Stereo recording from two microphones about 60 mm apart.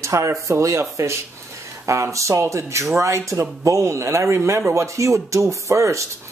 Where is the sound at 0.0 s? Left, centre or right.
Right.